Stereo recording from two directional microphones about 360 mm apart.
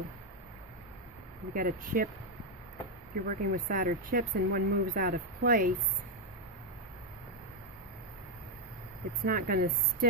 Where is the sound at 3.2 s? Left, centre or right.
Right.